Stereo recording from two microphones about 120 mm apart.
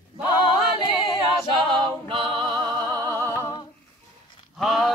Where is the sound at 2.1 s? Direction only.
45° right (ahead or behind); by 3.4 s 25° right (ahead or behind).